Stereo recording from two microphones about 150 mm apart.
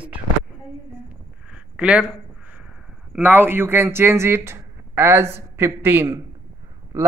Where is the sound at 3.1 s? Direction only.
10° right (ahead or behind).